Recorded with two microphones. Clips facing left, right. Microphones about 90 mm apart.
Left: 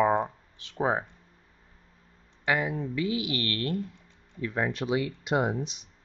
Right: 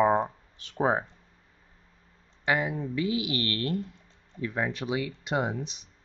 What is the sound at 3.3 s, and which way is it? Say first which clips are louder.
Speech: right 1 dB; 25° right (ahead or behind).